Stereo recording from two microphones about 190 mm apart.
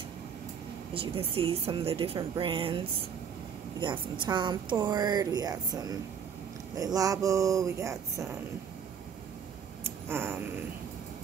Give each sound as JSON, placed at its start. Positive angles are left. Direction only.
{"t": 0.9, "sound": "speech", "side_deg": -30}
{"t": 3.8, "sound": "speech", "side_deg": -25}
{"t": 9.8, "sound": "a sound", "side_deg": -10}